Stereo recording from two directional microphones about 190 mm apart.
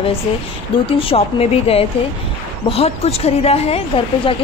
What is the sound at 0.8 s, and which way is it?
A woman's voice, 30° left (ahead or behind).